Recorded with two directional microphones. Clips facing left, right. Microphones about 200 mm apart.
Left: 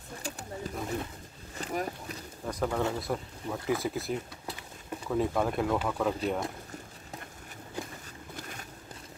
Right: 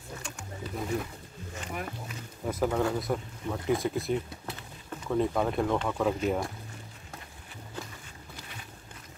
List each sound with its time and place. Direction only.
0.2 s wild animals: 35° left (ahead or behind)
2.4 s speech: 5° right (ahead or behind)
8.4 s boat: 45° left (ahead or behind)